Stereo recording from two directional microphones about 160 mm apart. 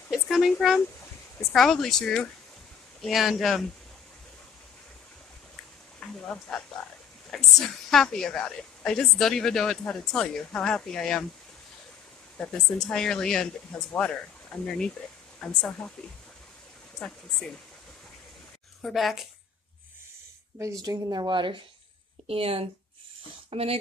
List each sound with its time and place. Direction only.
0.1 s a sound: centre (ahead or behind)
1.5 s a woman's voice: 5° left (ahead or behind)
5.9 s a sound: 5° left (ahead or behind)
7.2 s a woman's voice: centre (ahead or behind)
12.4 s a woman's voice: 5° left (ahead or behind)
17.0 s a woman's voice: centre (ahead or behind)
18.8 s speech: centre (ahead or behind)
20.8 s a woman's voice: 25° right (ahead or behind)